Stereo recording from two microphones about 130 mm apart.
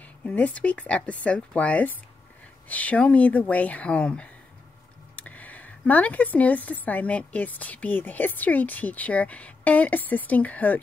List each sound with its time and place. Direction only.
0.2 s speech: 10° left (ahead or behind)